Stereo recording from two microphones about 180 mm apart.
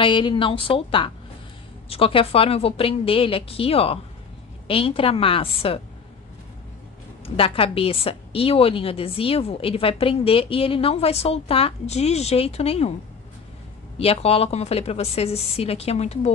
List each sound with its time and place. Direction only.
0.0 s a woman's voice: 25° left (ahead or behind)
7.2 s a woman's voice: 30° left (ahead or behind)
13.9 s a woman's voice: 35° left (ahead or behind)